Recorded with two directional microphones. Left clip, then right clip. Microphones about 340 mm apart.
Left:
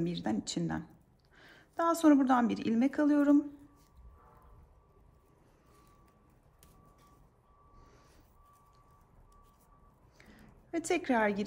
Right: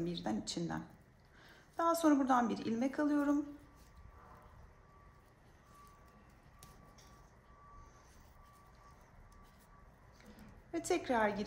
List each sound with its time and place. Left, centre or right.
0.0 s a woman's voice: left
10.7 s a woman's voice: left